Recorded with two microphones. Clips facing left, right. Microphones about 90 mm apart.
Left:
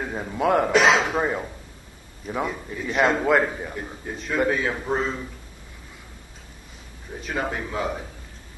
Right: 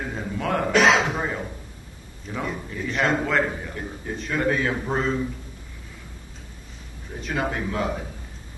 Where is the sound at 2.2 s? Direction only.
10° left (ahead or behind).